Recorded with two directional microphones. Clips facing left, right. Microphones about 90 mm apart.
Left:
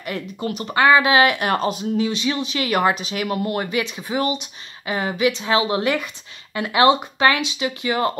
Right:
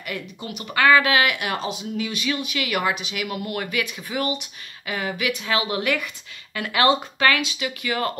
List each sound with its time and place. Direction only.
0.4 s speech: 35° left (ahead or behind)
0.7 s speech: 25° left (ahead or behind); by 2.0 s 40° left (ahead or behind)
2.0 s speech: 25° left (ahead or behind)